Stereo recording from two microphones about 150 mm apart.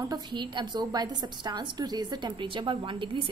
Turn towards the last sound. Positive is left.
turn(degrees=-35)  # may be behind; listen again after turning